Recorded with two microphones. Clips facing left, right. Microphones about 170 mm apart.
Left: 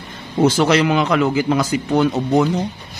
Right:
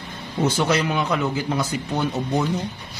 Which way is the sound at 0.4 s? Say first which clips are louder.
Left 6 dB; 90° left.